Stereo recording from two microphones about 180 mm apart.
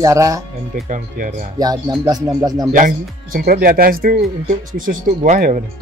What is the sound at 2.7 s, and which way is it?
Speech, 50° right (ahead or behind).